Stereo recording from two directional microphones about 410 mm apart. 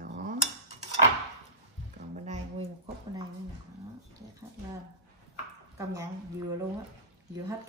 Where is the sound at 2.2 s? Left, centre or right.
Centre.